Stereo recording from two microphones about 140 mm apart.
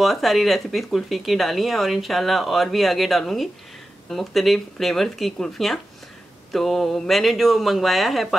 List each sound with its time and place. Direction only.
0.0 s speech: centre (ahead or behind)